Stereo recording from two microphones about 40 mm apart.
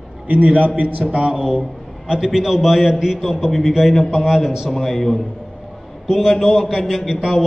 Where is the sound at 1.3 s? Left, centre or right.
Centre.